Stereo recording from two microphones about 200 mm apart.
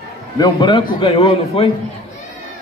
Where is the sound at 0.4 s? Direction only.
25° left (ahead or behind).